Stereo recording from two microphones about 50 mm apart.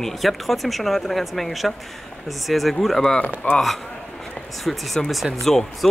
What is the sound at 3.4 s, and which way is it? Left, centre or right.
Speech, left.